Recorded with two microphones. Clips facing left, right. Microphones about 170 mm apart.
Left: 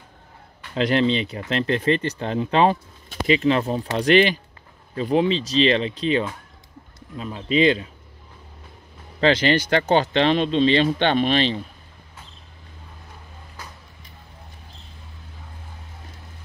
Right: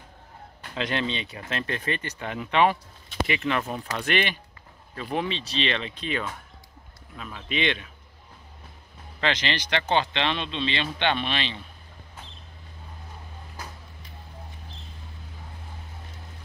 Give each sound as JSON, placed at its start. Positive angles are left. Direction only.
{"t": 0.7, "sound": "speech", "side_deg": 35}
{"t": 9.2, "sound": "speech", "side_deg": 40}